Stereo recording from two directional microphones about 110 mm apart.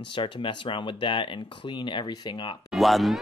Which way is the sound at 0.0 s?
50° left (ahead or behind).